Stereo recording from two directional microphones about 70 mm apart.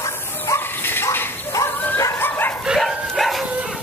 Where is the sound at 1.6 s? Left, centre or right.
Left.